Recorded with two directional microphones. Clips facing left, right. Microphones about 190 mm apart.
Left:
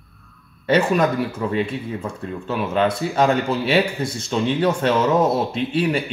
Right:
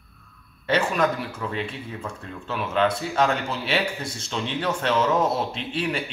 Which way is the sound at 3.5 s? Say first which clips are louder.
Left 7 dB; 40° left (ahead or behind).